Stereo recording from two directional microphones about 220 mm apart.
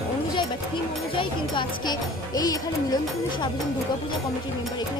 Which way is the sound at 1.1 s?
20° left (ahead or behind).